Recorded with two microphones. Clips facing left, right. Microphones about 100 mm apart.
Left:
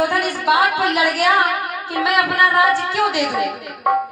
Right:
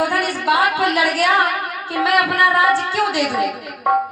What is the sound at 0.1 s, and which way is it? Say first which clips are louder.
A woman's voice: left 1 dB; 20° left (ahead or behind).